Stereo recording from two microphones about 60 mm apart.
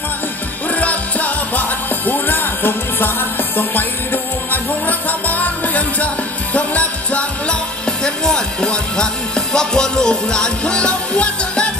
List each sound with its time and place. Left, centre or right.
0.7 s music: left
8.0 s speech: centre